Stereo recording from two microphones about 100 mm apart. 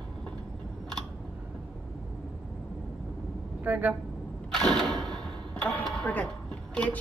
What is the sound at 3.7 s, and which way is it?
Speech, 15° right (ahead or behind).